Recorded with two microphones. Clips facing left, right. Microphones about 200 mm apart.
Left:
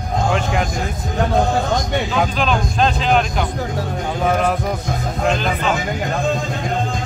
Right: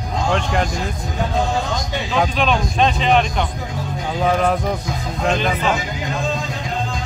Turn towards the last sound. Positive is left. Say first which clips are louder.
# even
turn(degrees=0)  # may be behind; listen again after turning